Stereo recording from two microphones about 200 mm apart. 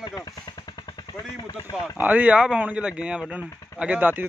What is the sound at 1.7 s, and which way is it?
Speech, 5° right (ahead or behind).